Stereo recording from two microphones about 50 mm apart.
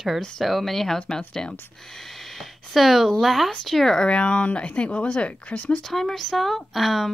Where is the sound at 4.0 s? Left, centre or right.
Left.